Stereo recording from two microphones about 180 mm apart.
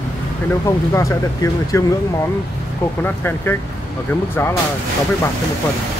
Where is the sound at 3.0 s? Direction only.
10° left (ahead or behind).